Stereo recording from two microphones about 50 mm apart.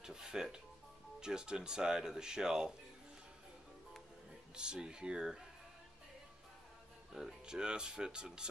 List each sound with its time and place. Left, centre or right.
0.0 s music: centre
1.2 s speech: centre
4.6 s speech: centre
7.1 s speech: centre